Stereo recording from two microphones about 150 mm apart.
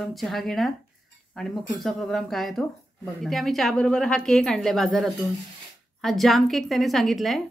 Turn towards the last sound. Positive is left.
turn(degrees=0)  # may be behind; listen again after turning